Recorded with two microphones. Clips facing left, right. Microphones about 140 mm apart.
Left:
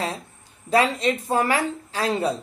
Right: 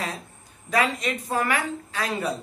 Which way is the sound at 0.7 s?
30° left (ahead or behind).